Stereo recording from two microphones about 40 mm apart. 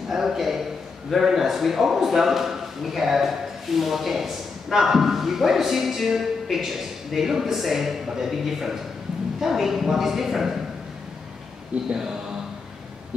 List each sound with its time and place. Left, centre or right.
0.1 s a sound: centre
1.1 s a man's voice: centre
11.9 s a man's voice: centre